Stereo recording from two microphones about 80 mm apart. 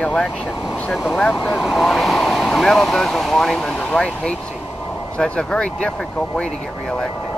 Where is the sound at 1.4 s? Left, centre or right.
Centre.